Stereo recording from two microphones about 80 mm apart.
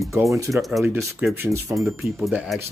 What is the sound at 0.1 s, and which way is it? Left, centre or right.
Speech, right.